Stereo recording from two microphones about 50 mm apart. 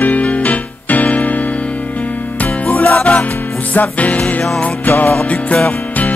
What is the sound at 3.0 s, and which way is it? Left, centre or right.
Music, left.